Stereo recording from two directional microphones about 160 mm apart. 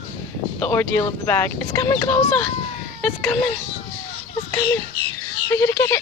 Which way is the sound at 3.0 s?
5° left (ahead or behind).